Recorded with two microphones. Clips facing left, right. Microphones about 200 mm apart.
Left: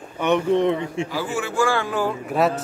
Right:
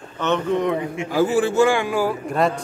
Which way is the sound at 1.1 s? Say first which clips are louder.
Right 8 dB; 45° right (ahead or behind).